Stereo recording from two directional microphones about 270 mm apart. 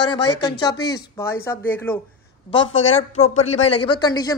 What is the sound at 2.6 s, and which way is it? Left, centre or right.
Speech, left.